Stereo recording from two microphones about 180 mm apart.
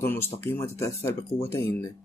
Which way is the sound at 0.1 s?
15° left (ahead or behind).